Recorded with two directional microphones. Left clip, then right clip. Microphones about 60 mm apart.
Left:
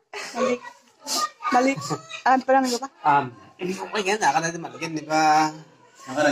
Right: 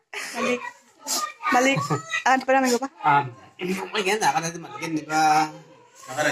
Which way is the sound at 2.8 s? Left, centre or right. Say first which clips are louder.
Even; right.